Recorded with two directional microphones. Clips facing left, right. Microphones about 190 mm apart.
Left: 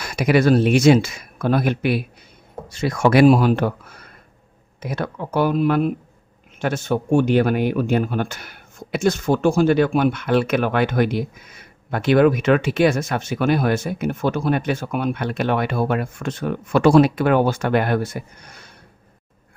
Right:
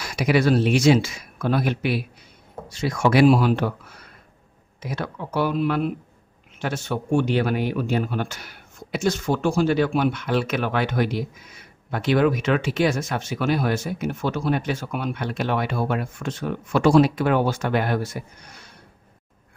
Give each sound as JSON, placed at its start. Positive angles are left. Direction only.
{"t": 0.0, "sound": "speech", "side_deg": 55}
{"t": 4.7, "sound": "speech", "side_deg": 50}